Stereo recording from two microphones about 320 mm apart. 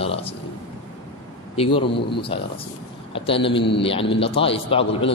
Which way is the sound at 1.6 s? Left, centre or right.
Centre.